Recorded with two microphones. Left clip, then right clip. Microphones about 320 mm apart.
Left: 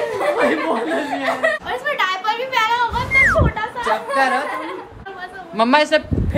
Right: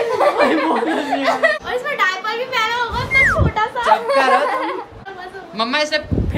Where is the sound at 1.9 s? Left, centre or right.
Centre.